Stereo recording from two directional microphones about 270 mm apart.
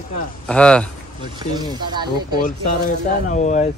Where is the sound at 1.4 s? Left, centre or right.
Centre.